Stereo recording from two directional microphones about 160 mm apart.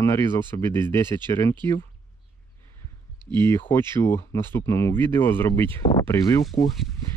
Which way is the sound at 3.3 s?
15° left (ahead or behind).